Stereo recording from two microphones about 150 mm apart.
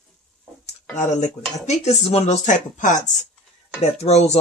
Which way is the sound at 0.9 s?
50° left (ahead or behind).